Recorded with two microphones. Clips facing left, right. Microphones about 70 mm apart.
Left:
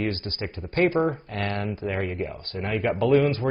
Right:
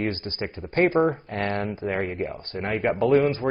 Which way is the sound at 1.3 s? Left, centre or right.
Right.